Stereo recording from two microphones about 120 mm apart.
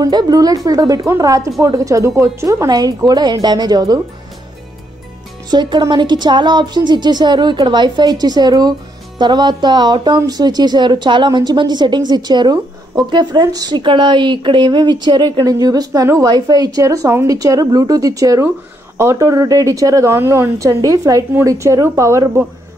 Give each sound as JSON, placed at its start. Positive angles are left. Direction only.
{"t": 0.0, "sound": "a woman's voice", "side_deg": -35}
{"t": 5.5, "sound": "a woman's voice", "side_deg": -35}